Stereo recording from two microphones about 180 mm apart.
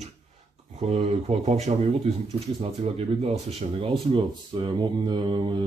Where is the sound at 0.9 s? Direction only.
35° right (ahead or behind).